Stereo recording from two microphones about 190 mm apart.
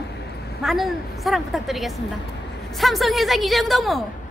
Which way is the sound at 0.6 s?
Centre (ahead or behind).